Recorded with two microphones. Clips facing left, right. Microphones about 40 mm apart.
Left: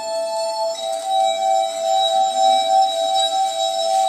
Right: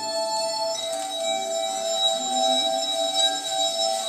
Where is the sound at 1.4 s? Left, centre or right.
Centre.